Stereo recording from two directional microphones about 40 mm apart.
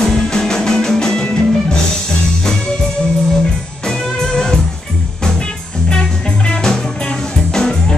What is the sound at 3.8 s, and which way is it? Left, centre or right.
Music, left.